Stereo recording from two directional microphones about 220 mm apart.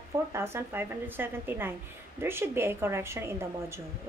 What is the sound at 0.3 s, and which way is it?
A woman's voice, 10° right (ahead or behind).